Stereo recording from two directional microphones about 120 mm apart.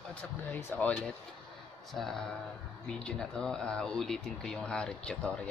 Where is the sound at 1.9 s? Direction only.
5° left (ahead or behind).